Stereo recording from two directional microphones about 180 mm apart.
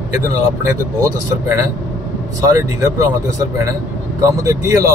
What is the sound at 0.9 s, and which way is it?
Speech, 15° right (ahead or behind).